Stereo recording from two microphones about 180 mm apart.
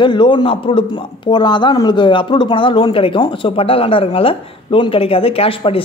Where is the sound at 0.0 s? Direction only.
25° left (ahead or behind).